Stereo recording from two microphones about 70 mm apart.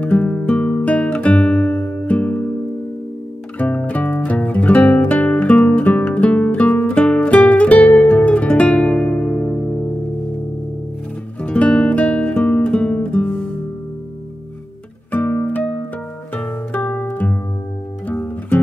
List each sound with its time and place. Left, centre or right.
0.0 s guitar: centre
3.5 s music: left
11.4 s guitar: centre
15.0 s music: left
18.0 s music: centre